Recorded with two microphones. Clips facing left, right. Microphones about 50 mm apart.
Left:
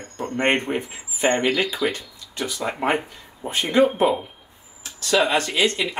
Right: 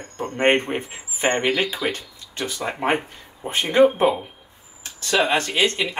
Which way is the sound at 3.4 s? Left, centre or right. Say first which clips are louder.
Right 2 dB; right.